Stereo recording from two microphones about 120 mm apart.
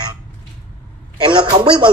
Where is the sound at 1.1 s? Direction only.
40° right (ahead or behind).